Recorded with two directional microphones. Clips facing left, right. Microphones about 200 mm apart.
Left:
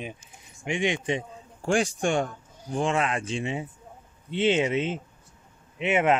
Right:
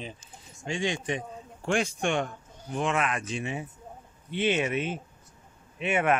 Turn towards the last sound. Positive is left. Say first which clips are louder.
# left 3 dB
turn(degrees=20)  # may be behind; listen again after turning